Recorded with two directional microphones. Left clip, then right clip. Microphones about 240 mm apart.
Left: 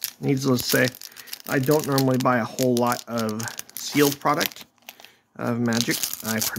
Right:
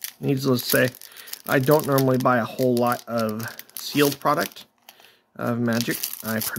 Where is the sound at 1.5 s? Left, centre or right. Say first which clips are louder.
Right 3 dB; centre.